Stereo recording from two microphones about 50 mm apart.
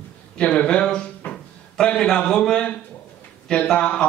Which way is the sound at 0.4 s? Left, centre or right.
Left.